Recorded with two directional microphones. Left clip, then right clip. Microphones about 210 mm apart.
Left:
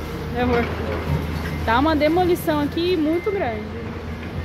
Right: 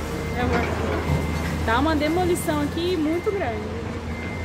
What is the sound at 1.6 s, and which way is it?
Speech, 35° left (ahead or behind).